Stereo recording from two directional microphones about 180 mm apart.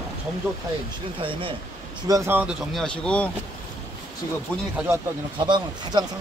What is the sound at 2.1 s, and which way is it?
Speech, 15° right (ahead or behind).